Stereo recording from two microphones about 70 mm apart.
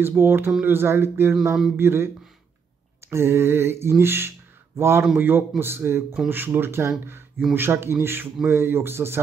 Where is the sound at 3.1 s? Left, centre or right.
Right.